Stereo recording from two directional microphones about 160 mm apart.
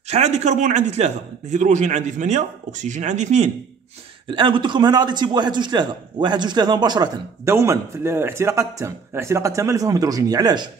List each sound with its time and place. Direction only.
0.1 s a man's voice: 45° right (ahead or behind)
4.3 s a man's voice: 30° right (ahead or behind)